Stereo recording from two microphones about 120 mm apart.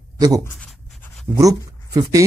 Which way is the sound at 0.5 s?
Centre (ahead or behind).